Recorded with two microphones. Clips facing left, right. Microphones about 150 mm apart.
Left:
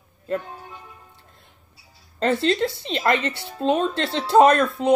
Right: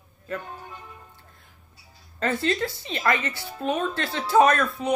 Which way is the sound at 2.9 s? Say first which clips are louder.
Left 2 dB; 20° left (ahead or behind).